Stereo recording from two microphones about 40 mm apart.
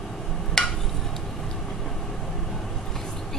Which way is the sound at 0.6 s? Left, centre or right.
Centre.